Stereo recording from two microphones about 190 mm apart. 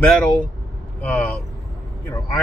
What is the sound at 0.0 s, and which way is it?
Speech, 5° left (ahead or behind).